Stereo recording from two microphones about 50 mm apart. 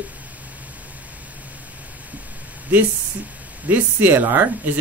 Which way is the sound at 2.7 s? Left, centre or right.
Right.